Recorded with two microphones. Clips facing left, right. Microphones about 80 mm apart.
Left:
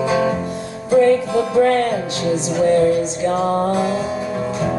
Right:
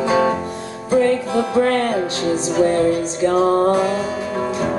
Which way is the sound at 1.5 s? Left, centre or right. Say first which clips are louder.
Left 3 dB; right.